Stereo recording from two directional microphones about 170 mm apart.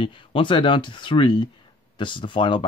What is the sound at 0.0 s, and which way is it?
Speech, 30° left (ahead or behind).